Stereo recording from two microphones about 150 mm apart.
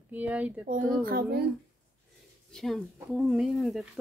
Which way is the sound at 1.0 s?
85° right.